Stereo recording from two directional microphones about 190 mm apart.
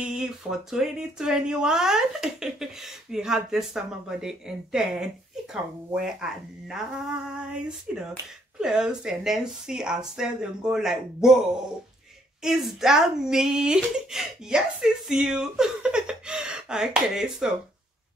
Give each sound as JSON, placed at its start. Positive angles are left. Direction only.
{"t": 0.0, "sound": "speech", "side_deg": -5}
{"t": 12.4, "sound": "speech", "side_deg": -5}